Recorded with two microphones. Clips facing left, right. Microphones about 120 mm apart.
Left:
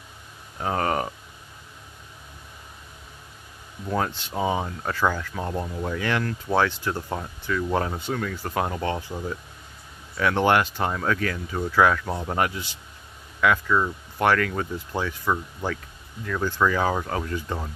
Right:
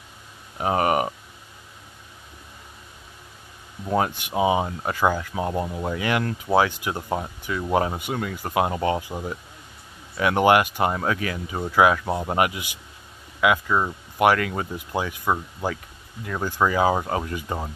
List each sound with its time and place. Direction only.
0.6 s a sound: 10° right (ahead or behind)
3.8 s speech: 15° right (ahead or behind)
13.7 s speech: 20° right (ahead or behind)
14.1 s speech: 10° right (ahead or behind)